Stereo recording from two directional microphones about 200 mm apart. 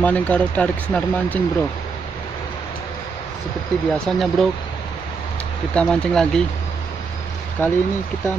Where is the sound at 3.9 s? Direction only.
Centre (ahead or behind).